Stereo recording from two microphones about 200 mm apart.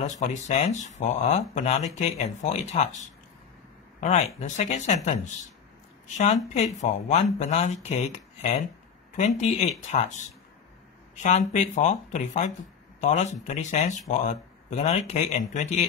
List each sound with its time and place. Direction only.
0.0 s speech: 35° left (ahead or behind)
4.0 s speech: 35° left (ahead or behind)
11.2 s speech: 35° left (ahead or behind)